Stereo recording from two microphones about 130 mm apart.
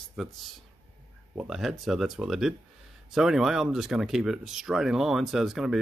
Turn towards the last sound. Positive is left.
turn(degrees=-5)  # may be behind; listen again after turning